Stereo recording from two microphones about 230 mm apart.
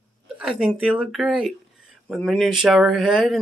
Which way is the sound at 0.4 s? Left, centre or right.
Centre.